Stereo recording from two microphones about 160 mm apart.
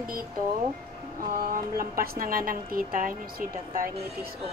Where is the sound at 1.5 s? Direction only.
65° right (ahead or behind).